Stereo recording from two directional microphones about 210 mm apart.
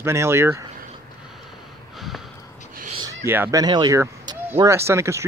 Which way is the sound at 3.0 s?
15° right (ahead or behind).